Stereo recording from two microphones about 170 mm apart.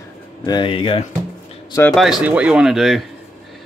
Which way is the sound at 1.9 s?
Centre (ahead or behind).